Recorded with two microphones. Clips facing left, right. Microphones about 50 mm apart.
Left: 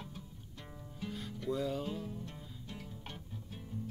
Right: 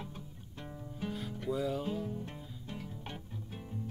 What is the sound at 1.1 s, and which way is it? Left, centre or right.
Music, centre.